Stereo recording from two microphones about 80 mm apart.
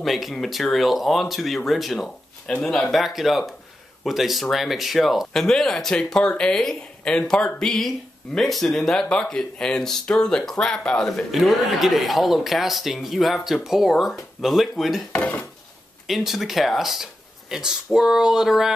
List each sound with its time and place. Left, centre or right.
0.0 s speech: centre
15.1 s dishes: centre
16.1 s speech: centre